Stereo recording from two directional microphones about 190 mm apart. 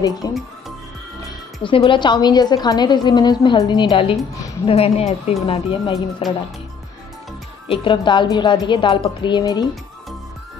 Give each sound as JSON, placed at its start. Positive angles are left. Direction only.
{"t": 0.2, "sound": "speech", "side_deg": 20}
{"t": 1.6, "sound": "a woman's voice", "side_deg": 25}
{"t": 7.6, "sound": "a woman's voice", "side_deg": 30}